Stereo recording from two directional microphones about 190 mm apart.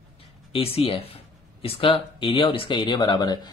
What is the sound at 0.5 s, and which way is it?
Speech, 30° left (ahead or behind).